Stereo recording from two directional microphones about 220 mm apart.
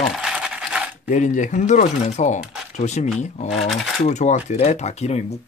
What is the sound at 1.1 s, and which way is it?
Speech, 35° left (ahead or behind).